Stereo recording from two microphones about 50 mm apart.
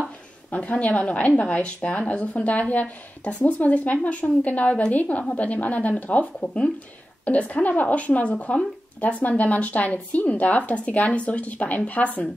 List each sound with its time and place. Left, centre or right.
0.6 s a woman's voice: left